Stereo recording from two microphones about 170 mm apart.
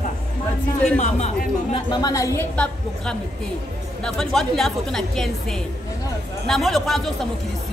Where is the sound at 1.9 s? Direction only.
20° left (ahead or behind).